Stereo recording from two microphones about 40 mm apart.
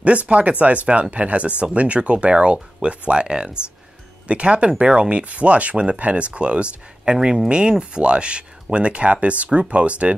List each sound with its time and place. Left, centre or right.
0.0 s speech: right